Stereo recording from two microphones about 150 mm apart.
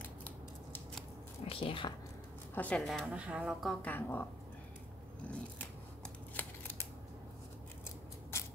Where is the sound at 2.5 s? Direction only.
10° left (ahead or behind).